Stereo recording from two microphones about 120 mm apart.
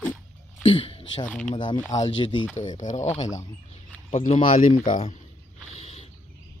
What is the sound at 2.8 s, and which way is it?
Speech, 85° left.